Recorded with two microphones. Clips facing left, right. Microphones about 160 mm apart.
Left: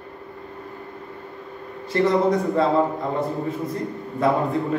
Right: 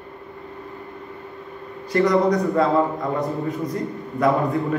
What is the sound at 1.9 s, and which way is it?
A man's voice, 25° left (ahead or behind).